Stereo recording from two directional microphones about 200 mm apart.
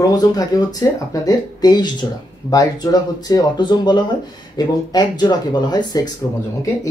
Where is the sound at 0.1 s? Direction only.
20° left (ahead or behind).